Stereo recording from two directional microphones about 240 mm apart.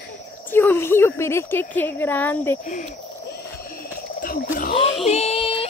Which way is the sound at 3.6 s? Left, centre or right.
Left.